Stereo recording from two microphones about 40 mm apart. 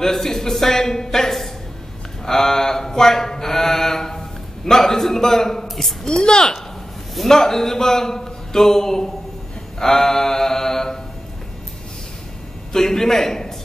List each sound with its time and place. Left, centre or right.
0.0 s a man's voice: centre
2.2 s mantra: centre
6.0 s a woman's voice: left
9.8 s mantra: centre
12.7 s a man's voice: centre